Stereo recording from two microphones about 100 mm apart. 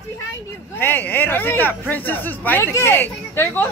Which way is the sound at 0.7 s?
25° left (ahead or behind).